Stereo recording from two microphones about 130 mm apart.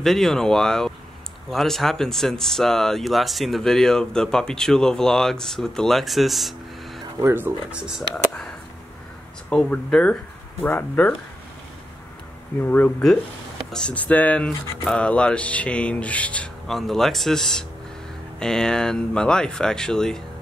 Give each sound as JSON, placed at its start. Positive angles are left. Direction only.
{"t": 0.0, "sound": "speech", "side_deg": 0}
{"t": 7.2, "sound": "speech", "side_deg": -20}
{"t": 9.5, "sound": "speech", "side_deg": 10}
{"t": 12.6, "sound": "speech", "side_deg": 15}